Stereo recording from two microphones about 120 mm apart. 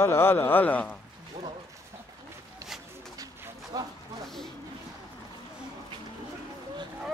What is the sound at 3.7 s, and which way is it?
Speech, 35° right (ahead or behind).